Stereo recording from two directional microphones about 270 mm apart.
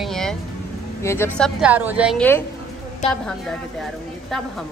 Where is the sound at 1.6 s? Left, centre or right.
Centre.